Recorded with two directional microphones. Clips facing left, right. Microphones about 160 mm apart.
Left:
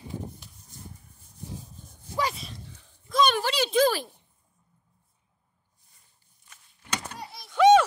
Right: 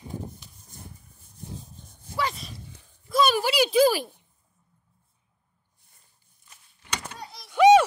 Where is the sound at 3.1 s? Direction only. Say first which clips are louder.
Right 1 dB; 5° right (ahead or behind).